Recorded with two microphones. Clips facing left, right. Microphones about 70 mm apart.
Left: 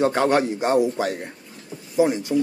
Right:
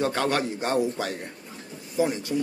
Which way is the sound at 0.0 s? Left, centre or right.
Left.